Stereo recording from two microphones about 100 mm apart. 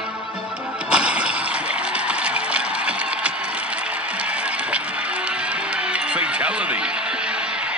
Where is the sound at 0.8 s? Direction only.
10° right (ahead or behind).